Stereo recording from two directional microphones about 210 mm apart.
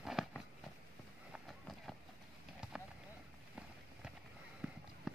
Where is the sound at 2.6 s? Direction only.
5° right (ahead or behind).